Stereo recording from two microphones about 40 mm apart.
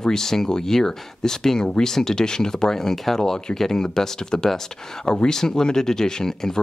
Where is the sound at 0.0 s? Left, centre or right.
Centre.